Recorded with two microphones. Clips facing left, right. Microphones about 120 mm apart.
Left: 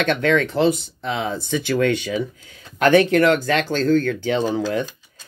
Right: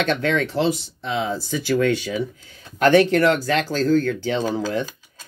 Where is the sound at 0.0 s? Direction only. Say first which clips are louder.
Left 2 dB; 55° left (ahead or behind).